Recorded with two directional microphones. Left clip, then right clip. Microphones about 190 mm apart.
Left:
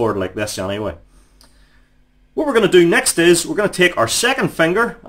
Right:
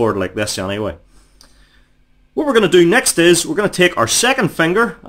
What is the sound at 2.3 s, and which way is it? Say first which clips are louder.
Speech: right 1 dB; 30° right (ahead or behind).